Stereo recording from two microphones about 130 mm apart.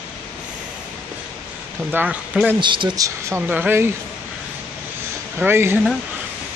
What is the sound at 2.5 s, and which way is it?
Speech, 35° right (ahead or behind).